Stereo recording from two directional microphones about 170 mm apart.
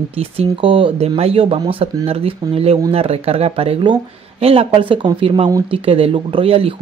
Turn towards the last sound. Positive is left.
turn(degrees=-35)  # may be behind; listen again after turning